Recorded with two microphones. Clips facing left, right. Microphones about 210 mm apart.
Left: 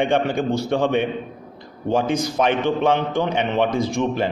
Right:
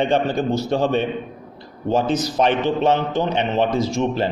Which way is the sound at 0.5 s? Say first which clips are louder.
Even; 55° left (ahead or behind).